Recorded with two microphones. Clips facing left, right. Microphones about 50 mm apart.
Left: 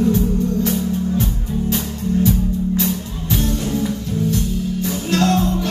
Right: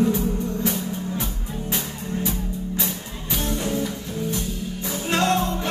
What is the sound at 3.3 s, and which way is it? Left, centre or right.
Music, right.